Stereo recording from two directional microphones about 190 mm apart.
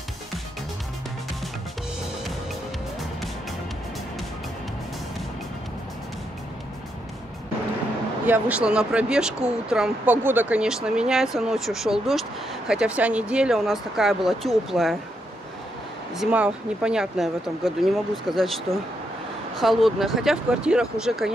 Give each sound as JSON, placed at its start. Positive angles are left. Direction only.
{"t": 8.3, "sound": "speech", "side_deg": -5}
{"t": 16.2, "sound": "speech", "side_deg": -5}
{"t": 19.6, "sound": "speech", "side_deg": 0}